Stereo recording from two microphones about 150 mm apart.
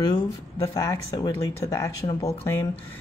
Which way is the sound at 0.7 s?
25° left (ahead or behind).